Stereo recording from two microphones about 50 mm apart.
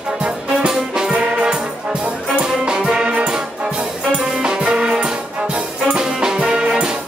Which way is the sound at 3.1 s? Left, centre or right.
Right.